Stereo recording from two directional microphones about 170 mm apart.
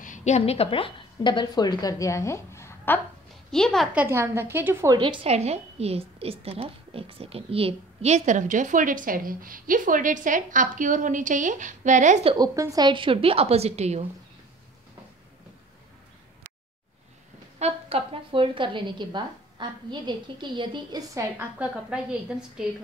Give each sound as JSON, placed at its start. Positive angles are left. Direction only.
{"t": 0.0, "sound": "a woman's voice", "side_deg": 45}
{"t": 3.5, "sound": "a woman's voice", "side_deg": 0}
{"t": 4.0, "sound": "a woman's voice", "side_deg": -15}
{"t": 4.9, "sound": "a woman's voice", "side_deg": -30}
{"t": 12.4, "sound": "a woman's voice", "side_deg": -20}
{"t": 17.6, "sound": "a woman's voice", "side_deg": -35}
{"t": 21.5, "sound": "a woman's voice", "side_deg": -5}